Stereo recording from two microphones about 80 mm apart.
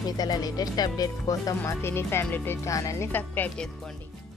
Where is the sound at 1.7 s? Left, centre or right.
Left.